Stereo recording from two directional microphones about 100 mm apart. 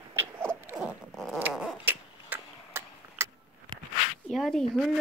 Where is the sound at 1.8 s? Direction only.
20° right (ahead or behind).